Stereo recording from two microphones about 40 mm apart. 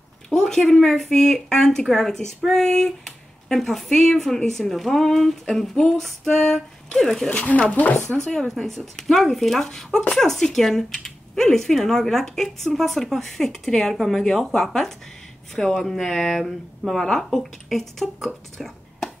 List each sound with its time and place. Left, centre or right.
0.3 s speech: centre
7.2 s speech: left
7.7 s speech: left
8.2 s speech: left
8.5 s speech: centre